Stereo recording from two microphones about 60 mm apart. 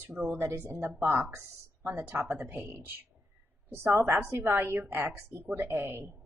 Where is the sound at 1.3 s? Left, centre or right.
Right.